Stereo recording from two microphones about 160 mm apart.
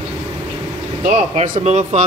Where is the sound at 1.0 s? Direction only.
50° right (ahead or behind).